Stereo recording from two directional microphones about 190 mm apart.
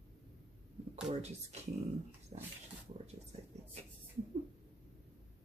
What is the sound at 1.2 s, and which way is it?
Speech, 35° right (ahead or behind).